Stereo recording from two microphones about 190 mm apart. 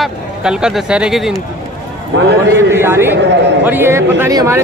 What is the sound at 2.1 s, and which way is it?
Speech, 70° right (ahead or behind).